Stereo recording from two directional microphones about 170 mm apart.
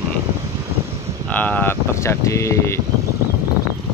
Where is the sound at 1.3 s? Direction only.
10° left (ahead or behind).